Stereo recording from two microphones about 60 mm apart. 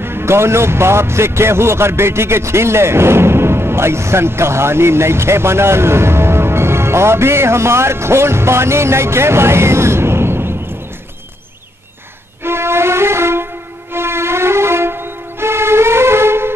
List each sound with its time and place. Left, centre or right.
0.0 s speech: right
12.4 s music: right